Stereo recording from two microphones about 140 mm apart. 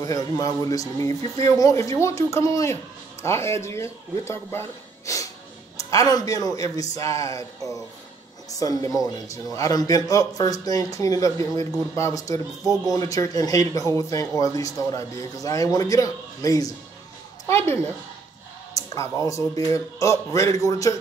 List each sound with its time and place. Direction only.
0.0 s a man's voice: 25° left (ahead or behind)